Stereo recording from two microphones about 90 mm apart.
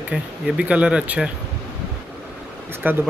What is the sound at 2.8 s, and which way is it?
Speech, 20° right (ahead or behind).